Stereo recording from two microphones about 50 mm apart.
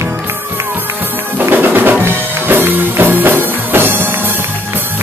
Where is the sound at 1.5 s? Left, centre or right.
Right.